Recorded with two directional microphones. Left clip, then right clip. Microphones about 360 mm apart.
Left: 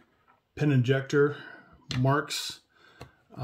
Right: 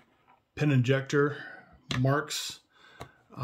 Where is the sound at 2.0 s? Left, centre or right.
Centre.